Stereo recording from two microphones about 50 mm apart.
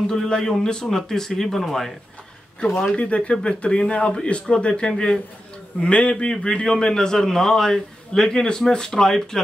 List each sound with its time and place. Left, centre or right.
0.0 s a man's voice: centre
3.0 s a man's voice: left